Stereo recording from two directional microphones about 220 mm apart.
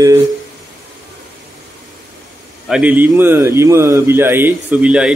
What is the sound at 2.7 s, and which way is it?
Speech, 5° right (ahead or behind).